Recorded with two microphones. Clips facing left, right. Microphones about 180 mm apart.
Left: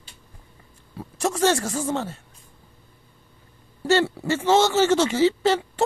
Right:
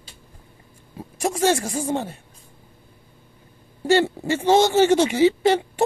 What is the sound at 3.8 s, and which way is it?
Speech, 15° right (ahead or behind).